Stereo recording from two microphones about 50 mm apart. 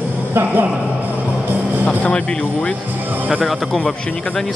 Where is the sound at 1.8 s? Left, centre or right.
Left.